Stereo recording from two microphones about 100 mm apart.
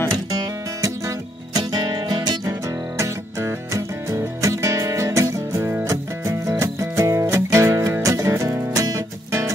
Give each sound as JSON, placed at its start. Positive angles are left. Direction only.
{"t": 0.4, "sound": "music", "side_deg": -35}
{"t": 1.6, "sound": "music", "side_deg": -45}
{"t": 3.0, "sound": "music", "side_deg": -30}